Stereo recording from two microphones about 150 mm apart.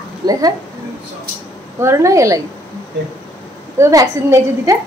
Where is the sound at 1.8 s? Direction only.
20° right (ahead or behind).